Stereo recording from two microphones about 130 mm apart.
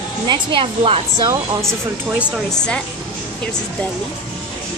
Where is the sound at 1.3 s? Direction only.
20° right (ahead or behind).